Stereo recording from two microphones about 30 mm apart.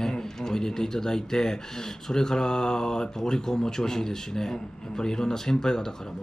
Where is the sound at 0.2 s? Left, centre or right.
Centre.